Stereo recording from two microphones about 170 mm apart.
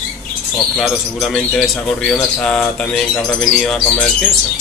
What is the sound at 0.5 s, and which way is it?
Speech, centre (ahead or behind).